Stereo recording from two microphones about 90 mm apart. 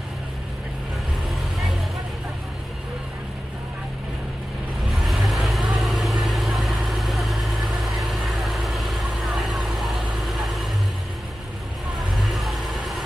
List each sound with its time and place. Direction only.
1.3 s vehicle: centre (ahead or behind)
5.0 s vehicle: centre (ahead or behind)
12.1 s vehicle: centre (ahead or behind)